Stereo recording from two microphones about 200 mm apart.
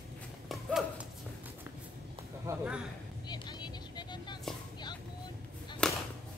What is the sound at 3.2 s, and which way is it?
Vehicle, 20° left (ahead or behind).